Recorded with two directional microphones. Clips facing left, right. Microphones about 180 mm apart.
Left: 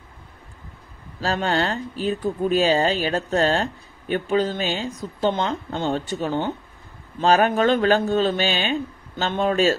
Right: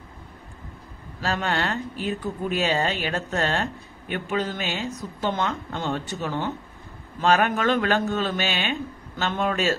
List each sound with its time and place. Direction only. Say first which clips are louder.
1.2 s speech: left 3 dB; 30° left (ahead or behind)